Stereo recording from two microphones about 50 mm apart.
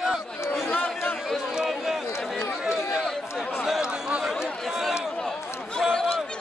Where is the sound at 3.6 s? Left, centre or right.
Centre.